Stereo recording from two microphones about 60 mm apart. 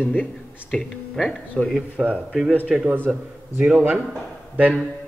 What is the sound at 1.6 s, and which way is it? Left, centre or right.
Speech, centre.